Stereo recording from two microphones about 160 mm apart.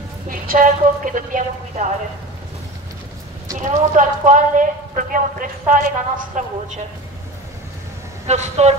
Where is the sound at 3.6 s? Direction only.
50° right (ahead or behind).